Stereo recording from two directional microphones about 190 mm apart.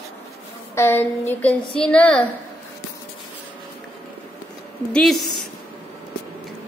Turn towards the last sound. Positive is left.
turn(degrees=0)  # may be behind; listen again after turning